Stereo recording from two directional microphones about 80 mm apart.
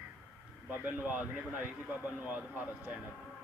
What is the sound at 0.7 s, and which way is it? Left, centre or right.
Speech, right.